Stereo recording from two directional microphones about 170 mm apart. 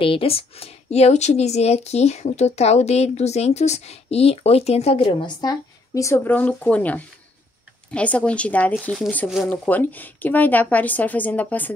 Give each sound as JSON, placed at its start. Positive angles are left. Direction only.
{"t": 0.0, "sound": "speech", "side_deg": 30}